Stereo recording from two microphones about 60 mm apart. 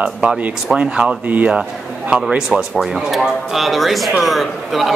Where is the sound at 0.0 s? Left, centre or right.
Centre.